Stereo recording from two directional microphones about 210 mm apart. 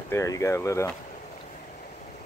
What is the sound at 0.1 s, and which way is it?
Speech, 15° left (ahead or behind).